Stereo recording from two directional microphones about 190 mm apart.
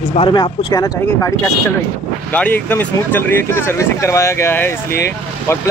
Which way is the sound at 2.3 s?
10° left (ahead or behind).